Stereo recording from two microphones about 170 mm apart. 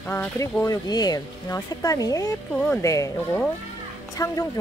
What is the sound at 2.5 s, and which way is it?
Speech, 5° left (ahead or behind).